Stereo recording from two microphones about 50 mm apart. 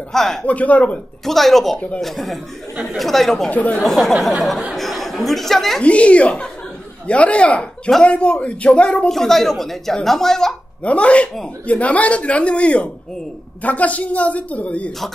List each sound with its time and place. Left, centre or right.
0.1 s a woman's voice: centre
0.5 s speech: left
1.2 s speech: centre
3.4 s speech: left
3.7 s speech: centre
4.7 s a sound: centre
5.8 s speech: left
9.1 s a woman's voice: centre
10.8 s speech: left